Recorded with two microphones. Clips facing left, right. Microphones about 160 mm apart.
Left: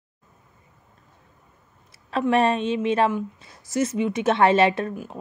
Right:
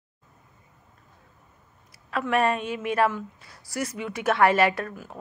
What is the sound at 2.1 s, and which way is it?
A woman's voice, 25° left (ahead or behind).